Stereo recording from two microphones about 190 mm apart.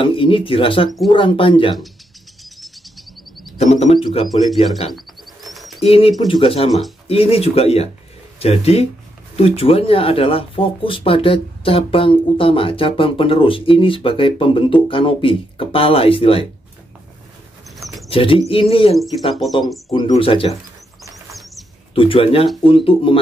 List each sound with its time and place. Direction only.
0.0 s speech: 25° left (ahead or behind)
3.5 s speech: 35° left (ahead or behind)
4.9 s bird: centre (ahead or behind)
5.8 s speech: 30° left (ahead or behind)
18.0 s speech: 30° left (ahead or behind)
21.1 s bird flight: centre (ahead or behind)
21.9 s speech: 30° left (ahead or behind)